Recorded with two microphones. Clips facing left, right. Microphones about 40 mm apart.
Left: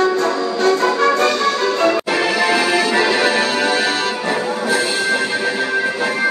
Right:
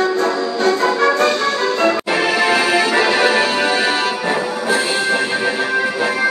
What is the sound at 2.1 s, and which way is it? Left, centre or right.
Music, centre.